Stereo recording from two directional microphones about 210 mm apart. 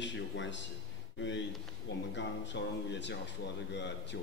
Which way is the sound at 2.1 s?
60° left (ahead or behind).